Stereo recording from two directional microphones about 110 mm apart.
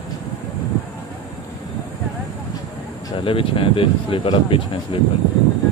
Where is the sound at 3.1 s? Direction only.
55° left (ahead or behind).